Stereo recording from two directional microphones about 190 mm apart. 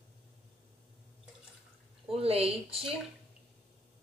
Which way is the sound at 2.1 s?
30° right (ahead or behind).